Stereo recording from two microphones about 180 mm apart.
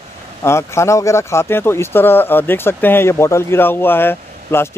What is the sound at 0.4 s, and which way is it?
Speech, 15° left (ahead or behind).